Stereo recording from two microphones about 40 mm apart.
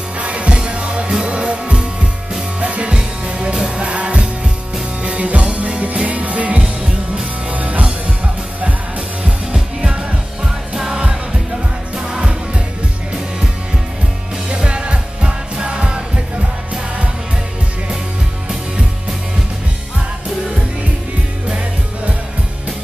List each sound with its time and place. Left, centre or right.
0.2 s music: right
9.2 s music: right
12.0 s music: right
14.5 s music: right